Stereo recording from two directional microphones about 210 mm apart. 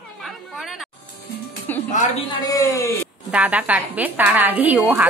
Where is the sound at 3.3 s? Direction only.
5° right (ahead or behind).